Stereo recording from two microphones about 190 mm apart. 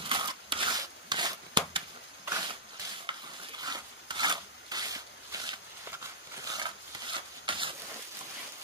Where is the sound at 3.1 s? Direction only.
25° right (ahead or behind).